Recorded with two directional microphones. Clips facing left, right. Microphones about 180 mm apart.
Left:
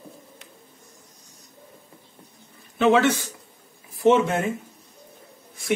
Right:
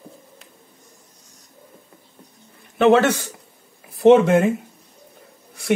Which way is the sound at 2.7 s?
60° right (ahead or behind).